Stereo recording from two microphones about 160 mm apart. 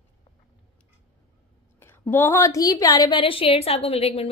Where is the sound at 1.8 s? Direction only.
15° left (ahead or behind); by 4.3 s 40° left (ahead or behind).